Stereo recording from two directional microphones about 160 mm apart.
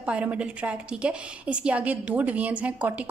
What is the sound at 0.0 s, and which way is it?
A woman's voice, 10° right (ahead or behind).